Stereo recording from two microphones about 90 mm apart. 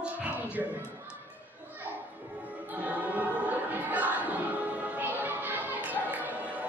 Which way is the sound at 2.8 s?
15° right (ahead or behind).